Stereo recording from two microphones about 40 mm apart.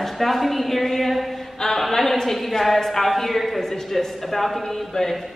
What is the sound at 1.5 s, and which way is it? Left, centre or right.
A woman's voice, centre.